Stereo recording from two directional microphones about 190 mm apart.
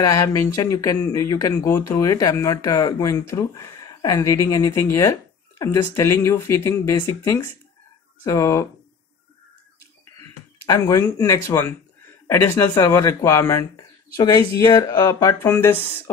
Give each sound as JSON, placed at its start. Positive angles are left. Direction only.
{"t": 0.0, "sound": "speech", "side_deg": 20}
{"t": 10.6, "sound": "speech", "side_deg": 15}